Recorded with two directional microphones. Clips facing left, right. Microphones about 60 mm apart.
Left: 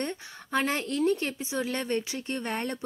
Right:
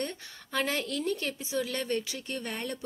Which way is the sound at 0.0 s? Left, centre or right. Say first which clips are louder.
Left 2 dB; left.